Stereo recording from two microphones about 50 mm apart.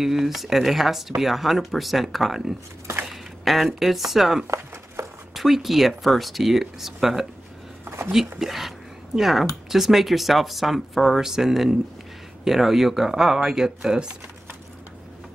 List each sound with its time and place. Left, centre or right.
0.0 s speech: centre
5.0 s a sound: right
5.3 s speech: centre
8.4 s speech: centre